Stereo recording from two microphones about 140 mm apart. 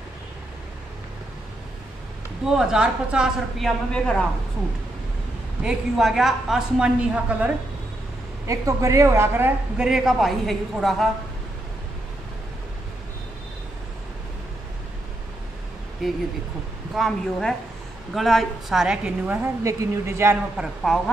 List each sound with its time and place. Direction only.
2.4 s a woman's voice: 5° right (ahead or behind)
5.6 s a woman's voice: 5° right (ahead or behind)
8.5 s a woman's voice: 25° right (ahead or behind)
9.8 s a woman's voice: 5° right (ahead or behind)
16.0 s a woman's voice: centre (ahead or behind); by 20.3 s 20° right (ahead or behind)
20.5 s a woman's voice: 5° right (ahead or behind)